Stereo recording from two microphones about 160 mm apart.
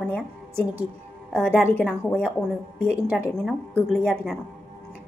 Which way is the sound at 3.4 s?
5° left (ahead or behind).